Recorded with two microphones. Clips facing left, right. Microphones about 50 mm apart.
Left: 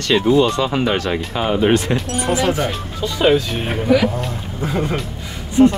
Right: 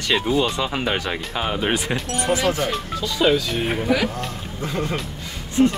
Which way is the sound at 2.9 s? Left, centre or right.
Left.